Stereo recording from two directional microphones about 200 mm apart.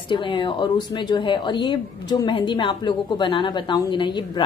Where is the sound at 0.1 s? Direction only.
25° left (ahead or behind).